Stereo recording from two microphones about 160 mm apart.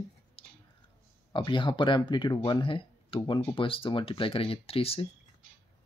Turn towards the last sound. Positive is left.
turn(degrees=35)  # may be behind; listen again after turning